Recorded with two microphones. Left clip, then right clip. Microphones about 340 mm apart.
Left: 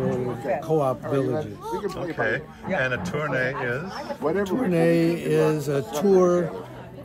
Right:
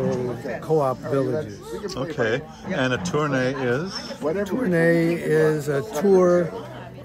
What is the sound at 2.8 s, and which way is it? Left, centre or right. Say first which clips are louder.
Speech: right 3 dB; centre.